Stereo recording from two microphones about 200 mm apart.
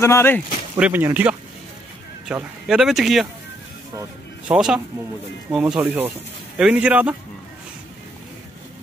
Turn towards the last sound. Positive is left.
turn(degrees=-5)  # may be behind; listen again after turning